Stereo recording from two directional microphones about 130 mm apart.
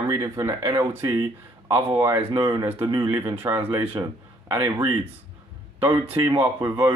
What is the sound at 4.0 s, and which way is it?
Speech, 30° right (ahead or behind).